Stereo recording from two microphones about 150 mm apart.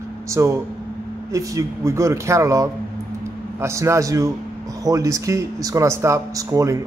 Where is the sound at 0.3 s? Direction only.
20° right (ahead or behind).